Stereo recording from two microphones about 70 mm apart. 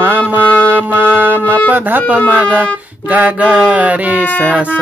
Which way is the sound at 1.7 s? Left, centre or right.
Right.